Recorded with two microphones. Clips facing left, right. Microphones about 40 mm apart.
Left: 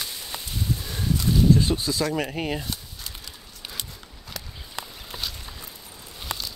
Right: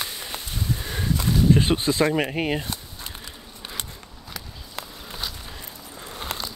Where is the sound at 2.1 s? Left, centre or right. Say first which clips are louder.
Right 3 dB; centre.